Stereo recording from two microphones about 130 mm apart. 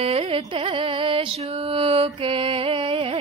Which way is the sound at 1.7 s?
50° right (ahead or behind).